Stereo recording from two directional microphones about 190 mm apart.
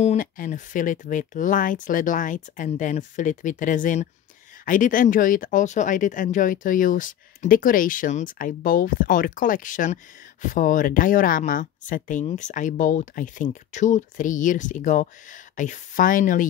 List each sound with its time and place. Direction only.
0.0 s speech: 40° left (ahead or behind)